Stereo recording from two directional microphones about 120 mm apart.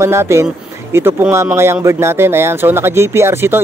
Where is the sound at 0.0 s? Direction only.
20° right (ahead or behind).